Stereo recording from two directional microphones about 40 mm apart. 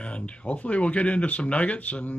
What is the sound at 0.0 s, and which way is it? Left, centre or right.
Speech, left.